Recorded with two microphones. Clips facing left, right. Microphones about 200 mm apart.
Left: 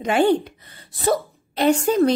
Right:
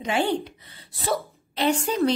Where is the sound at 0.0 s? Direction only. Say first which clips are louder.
Left 7 dB; 50° left (ahead or behind).